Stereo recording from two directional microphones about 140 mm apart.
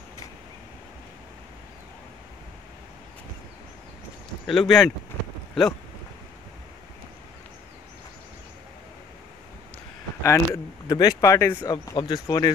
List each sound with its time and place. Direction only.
4.5 s speech: centre (ahead or behind)
10.2 s speech: 20° left (ahead or behind)